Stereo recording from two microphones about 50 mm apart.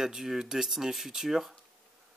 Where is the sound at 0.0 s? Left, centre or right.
Centre.